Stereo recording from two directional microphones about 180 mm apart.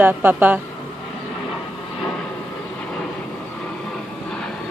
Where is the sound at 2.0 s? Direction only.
5° left (ahead or behind).